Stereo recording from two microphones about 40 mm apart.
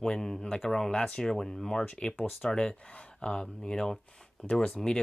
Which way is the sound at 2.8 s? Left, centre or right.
Left.